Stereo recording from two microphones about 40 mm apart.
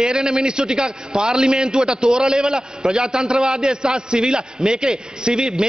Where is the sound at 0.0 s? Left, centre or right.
Centre.